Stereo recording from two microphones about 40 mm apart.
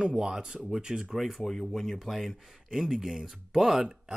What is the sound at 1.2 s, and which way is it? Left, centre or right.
Speech, centre.